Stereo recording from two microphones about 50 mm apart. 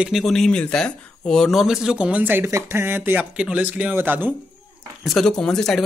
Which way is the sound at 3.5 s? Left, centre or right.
Right.